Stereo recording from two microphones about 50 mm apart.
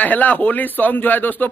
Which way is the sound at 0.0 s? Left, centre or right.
Left.